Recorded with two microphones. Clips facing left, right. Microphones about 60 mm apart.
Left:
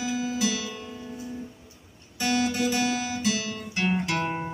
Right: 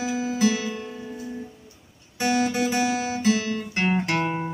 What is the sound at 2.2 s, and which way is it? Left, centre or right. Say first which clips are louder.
Music: right 3 dB; right.